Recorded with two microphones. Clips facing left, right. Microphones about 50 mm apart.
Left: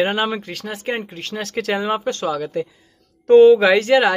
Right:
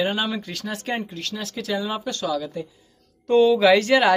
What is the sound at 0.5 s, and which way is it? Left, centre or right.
Speech, centre.